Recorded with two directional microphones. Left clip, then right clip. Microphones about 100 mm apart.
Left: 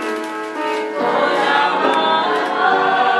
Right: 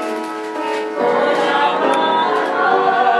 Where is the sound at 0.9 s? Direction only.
20° left (ahead or behind).